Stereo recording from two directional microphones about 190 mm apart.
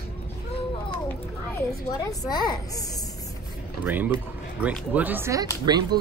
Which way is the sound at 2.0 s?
20° left (ahead or behind).